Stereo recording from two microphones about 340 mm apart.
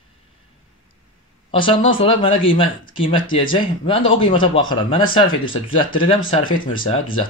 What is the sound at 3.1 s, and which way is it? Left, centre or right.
Speech, centre.